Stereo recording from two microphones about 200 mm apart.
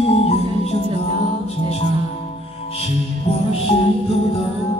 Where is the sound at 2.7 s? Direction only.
30° left (ahead or behind).